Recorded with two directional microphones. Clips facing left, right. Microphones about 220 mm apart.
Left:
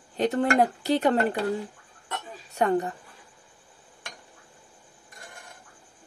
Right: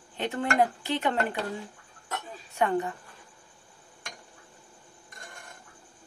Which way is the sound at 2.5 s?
40° left (ahead or behind).